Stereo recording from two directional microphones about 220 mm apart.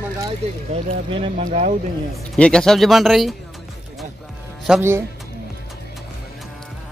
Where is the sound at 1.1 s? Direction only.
25° right (ahead or behind).